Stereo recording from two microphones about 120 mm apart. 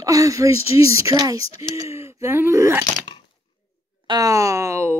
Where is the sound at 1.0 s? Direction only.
30° right (ahead or behind).